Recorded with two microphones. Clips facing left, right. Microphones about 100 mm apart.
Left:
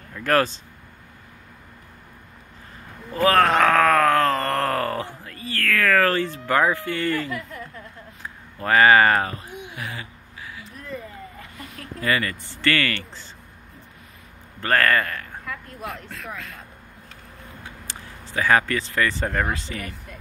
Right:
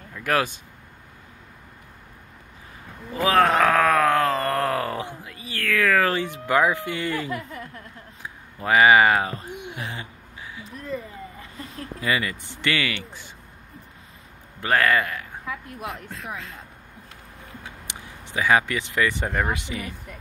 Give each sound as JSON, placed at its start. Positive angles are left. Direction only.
{"t": 0.1, "sound": "speech", "side_deg": -10}
{"t": 3.2, "sound": "groan", "side_deg": -15}
{"t": 8.2, "sound": "speech", "side_deg": -10}
{"t": 9.3, "sound": "a sound", "side_deg": -30}
{"t": 11.6, "sound": "a sound", "side_deg": -30}
{"t": 12.0, "sound": "speech", "side_deg": -15}
{"t": 14.6, "sound": "speech", "side_deg": -15}
{"t": 16.2, "sound": "speech", "side_deg": -30}
{"t": 17.8, "sound": "speech", "side_deg": -15}